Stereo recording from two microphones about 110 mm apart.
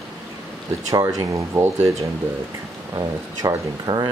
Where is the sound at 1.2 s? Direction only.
30° right (ahead or behind).